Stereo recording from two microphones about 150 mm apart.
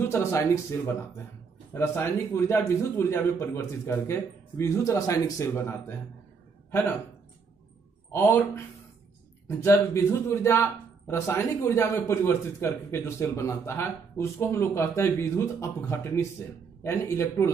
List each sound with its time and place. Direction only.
0.0 s a man's voice: 15° left (ahead or behind)
8.1 s a man's voice: 15° left (ahead or behind)